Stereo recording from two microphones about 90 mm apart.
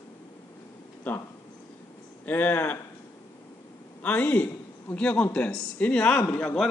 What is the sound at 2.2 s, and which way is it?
Speech, 20° left (ahead or behind).